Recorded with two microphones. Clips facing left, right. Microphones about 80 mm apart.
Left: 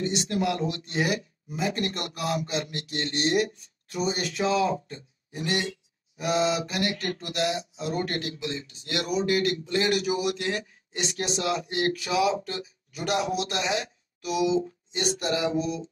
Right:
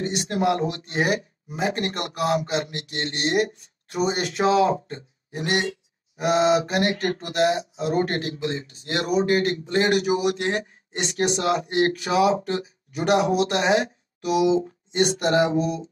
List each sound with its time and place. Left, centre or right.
0.0 s speech: right